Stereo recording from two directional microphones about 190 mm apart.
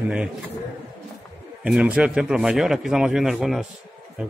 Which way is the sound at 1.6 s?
5° right (ahead or behind).